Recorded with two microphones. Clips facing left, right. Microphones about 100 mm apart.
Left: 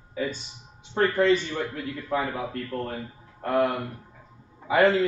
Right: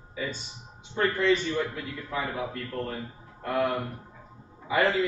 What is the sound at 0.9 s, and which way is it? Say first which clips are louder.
A man's voice: left 3 dB; 50° left (ahead or behind).